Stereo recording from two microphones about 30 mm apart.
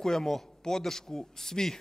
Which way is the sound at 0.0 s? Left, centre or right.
Centre.